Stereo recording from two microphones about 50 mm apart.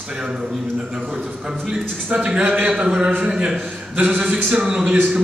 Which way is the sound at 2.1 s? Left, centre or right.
Right.